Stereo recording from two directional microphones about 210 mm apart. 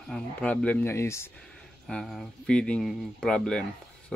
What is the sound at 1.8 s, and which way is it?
Speech, centre (ahead or behind).